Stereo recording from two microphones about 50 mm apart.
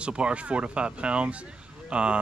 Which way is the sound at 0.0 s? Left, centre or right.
Right.